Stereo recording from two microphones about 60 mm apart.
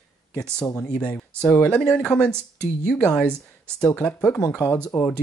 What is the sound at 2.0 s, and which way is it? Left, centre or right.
Speech, centre.